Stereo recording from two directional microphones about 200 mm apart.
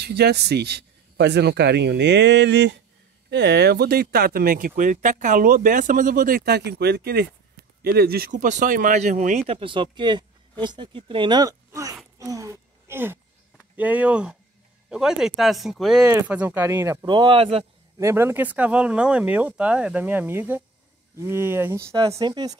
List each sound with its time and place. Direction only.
0.0 s speech: 55° right (ahead or behind); by 9.4 s 40° right (ahead or behind)
9.5 s speech: 25° right (ahead or behind)
12.2 s a sound: 15° right (ahead or behind)
13.7 s speech: 10° right (ahead or behind); by 17.6 s 30° right (ahead or behind)
17.9 s speech: 15° right (ahead or behind)